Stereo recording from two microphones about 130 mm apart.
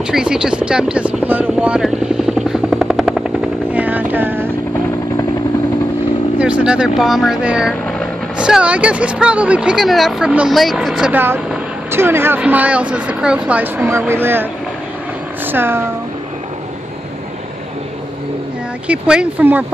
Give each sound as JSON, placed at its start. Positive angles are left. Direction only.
{"t": 0.0, "sound": "helicopter", "side_deg": -5}
{"t": 3.7, "sound": "vehicle", "side_deg": -10}
{"t": 6.3, "sound": "speech", "side_deg": -10}
{"t": 18.9, "sound": "speech", "side_deg": -10}